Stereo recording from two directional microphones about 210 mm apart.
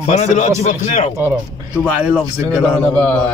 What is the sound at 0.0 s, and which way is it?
Speech, 35° left (ahead or behind).